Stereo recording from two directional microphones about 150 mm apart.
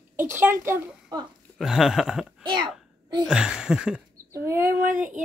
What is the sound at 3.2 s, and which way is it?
Speech, 5° right (ahead or behind).